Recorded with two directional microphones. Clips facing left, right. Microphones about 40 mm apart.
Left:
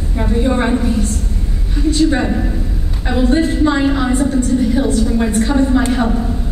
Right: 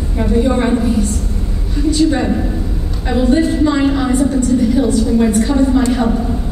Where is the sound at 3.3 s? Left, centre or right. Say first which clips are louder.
Right 1 dB; left.